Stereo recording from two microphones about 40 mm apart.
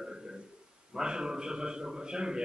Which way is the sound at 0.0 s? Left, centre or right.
Centre.